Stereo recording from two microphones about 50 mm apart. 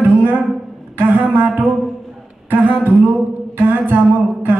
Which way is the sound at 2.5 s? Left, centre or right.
Right.